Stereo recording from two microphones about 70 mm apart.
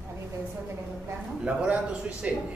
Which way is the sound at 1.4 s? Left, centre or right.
Centre.